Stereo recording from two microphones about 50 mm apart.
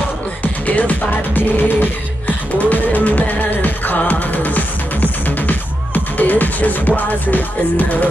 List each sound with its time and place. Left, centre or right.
0.4 s music: left
6.1 s speech: left
7.0 s music: left